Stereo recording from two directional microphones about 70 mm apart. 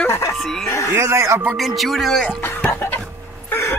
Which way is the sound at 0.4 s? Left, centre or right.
Centre.